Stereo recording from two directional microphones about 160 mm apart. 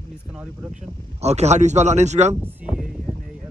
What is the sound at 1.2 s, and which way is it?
Speech, 45° right (ahead or behind).